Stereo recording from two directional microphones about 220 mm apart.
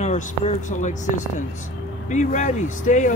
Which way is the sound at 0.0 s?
35° left (ahead or behind).